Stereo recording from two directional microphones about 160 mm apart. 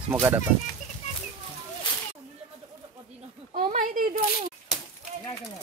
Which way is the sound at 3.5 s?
55° right (ahead or behind).